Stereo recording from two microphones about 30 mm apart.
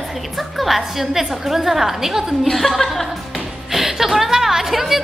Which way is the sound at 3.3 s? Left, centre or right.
Centre.